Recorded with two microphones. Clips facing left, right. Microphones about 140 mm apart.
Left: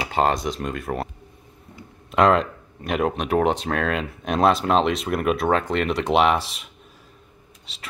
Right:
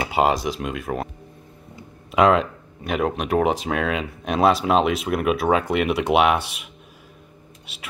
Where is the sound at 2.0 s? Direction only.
5° right (ahead or behind).